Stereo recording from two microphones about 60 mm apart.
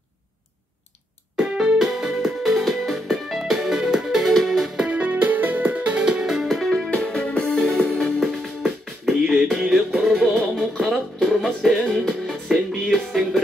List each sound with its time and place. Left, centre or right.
1.3 s keyboard: centre
1.8 s music: centre
4.8 s music: right
5.9 s music: centre
6.9 s music: centre
8.2 s music: centre
9.2 s music: centre
9.5 s music: centre